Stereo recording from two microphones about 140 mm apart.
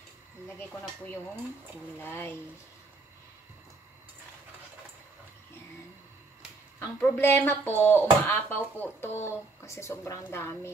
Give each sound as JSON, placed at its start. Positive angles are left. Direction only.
{"t": 2.0, "sound": "speech", "side_deg": 15}
{"t": 6.8, "sound": "speech", "side_deg": 15}